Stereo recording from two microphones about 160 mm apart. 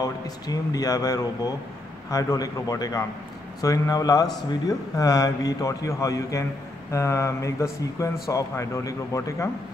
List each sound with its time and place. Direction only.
0.0 s speech: 25° left (ahead or behind)